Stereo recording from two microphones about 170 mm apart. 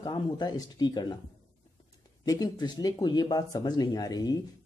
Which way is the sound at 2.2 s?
25° left (ahead or behind).